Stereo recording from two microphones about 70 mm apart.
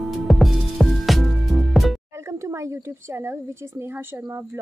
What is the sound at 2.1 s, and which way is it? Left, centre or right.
Speech, right.